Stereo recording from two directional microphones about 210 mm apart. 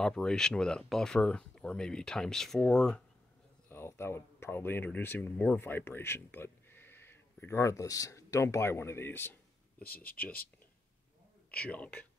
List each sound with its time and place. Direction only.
0.0 s a man's voice: 5° left (ahead or behind)
11.5 s a man's voice: 5° left (ahead or behind)